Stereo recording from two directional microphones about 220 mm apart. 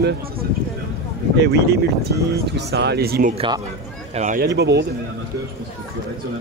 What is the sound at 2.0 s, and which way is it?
Speech, 50° right (ahead or behind).